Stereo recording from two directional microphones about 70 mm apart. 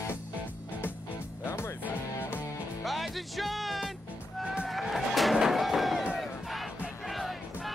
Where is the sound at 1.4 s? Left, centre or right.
Left.